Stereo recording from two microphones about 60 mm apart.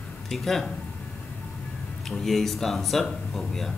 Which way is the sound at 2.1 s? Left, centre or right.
Centre.